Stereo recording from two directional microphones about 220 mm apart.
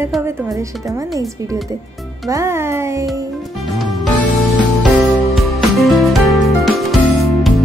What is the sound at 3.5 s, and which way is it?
Music, centre (ahead or behind).